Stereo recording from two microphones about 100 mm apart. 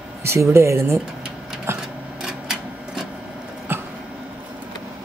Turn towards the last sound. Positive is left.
turn(degrees=-25)  # may be behind; listen again after turning